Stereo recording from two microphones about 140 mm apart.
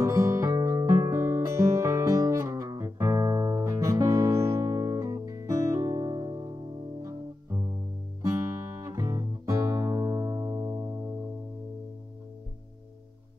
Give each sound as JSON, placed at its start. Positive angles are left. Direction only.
{"t": 0.0, "sound": "music", "side_deg": -25}
{"t": 8.8, "sound": "music", "side_deg": -25}